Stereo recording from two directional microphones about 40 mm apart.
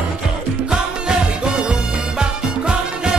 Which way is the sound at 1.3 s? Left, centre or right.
Right.